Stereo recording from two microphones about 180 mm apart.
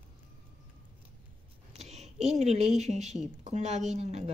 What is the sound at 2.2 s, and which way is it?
Speech, 35° right (ahead or behind).